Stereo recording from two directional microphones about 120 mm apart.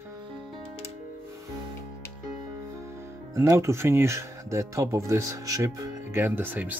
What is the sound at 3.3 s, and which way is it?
Speech, 25° right (ahead or behind).